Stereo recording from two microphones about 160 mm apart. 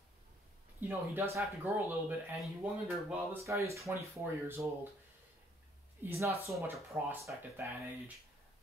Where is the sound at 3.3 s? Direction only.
20° right (ahead or behind).